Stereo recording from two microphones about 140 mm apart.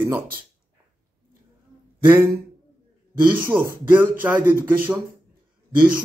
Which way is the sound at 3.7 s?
15° right (ahead or behind).